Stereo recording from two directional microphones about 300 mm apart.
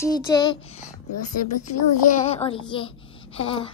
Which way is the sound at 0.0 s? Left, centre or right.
Centre.